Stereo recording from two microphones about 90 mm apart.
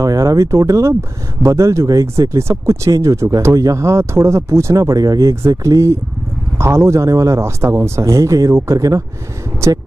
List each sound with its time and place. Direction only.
0.0 s speech: 40° right (ahead or behind)